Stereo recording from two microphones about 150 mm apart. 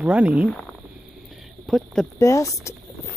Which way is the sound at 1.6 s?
Centre (ahead or behind).